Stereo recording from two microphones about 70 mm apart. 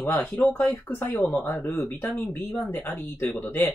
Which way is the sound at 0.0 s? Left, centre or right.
Left.